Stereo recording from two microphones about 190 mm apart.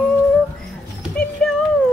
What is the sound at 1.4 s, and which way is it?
Music, 5° left (ahead or behind).